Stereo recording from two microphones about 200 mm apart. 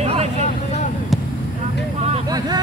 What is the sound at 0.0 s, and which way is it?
Vehicle, 30° right (ahead or behind).